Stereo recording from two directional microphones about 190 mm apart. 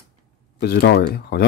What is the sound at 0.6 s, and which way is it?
Speech, 55° left (ahead or behind).